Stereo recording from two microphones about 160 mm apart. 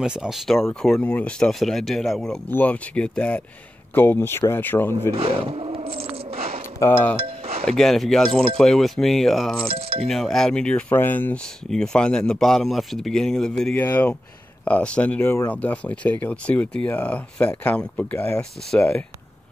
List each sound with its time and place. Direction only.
0.0 s speech: 5° right (ahead or behind); by 4.9 s 15° left (ahead or behind)
5.1 s a sound: 35° right (ahead or behind)
6.8 s speech: 15° left (ahead or behind)
7.2 s music: 35° right (ahead or behind)
7.6 s speech: 5° left (ahead or behind)
9.7 s speech: 35° right (ahead or behind)
10.0 s speech: 5° left (ahead or behind)